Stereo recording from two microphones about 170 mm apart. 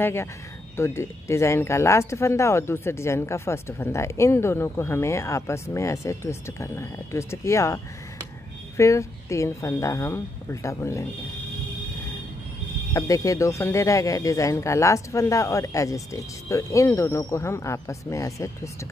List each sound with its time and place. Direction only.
0.0 s speech: 15° left (ahead or behind)
12.9 s speech: 20° left (ahead or behind)